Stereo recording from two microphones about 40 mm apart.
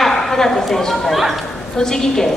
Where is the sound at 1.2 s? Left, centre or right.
Centre.